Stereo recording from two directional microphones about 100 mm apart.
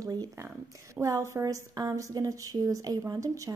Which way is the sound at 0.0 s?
40° right (ahead or behind).